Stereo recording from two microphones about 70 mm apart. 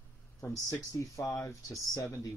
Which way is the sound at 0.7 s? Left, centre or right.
Left.